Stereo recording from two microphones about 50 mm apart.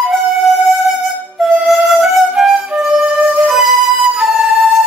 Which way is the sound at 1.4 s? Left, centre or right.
Centre.